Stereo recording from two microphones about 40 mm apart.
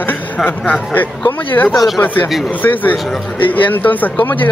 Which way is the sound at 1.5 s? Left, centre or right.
Left.